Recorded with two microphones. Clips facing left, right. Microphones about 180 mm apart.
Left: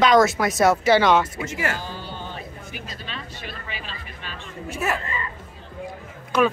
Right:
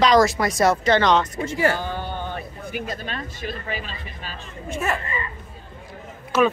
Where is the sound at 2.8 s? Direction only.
50° right (ahead or behind).